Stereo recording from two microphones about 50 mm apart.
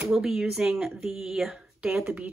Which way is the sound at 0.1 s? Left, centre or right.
Centre.